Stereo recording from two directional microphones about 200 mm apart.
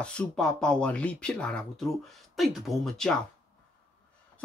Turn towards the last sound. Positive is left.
turn(degrees=0)  # may be behind; listen again after turning